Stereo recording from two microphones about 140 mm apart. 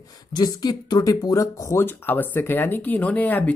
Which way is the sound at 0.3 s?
30° left (ahead or behind).